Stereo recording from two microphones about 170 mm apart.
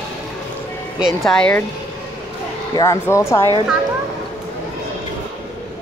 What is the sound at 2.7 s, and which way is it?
Speech, 20° left (ahead or behind).